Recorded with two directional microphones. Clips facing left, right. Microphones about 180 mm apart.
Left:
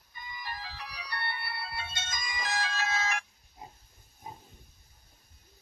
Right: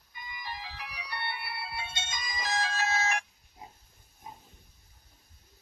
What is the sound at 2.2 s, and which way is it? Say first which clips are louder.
Music: right 2 dB; 35° right (ahead or behind).